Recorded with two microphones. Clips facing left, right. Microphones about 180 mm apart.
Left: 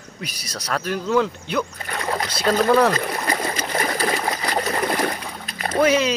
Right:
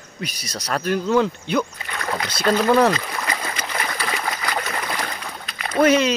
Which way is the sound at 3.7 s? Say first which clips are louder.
Left 5 dB; 35° left (ahead or behind).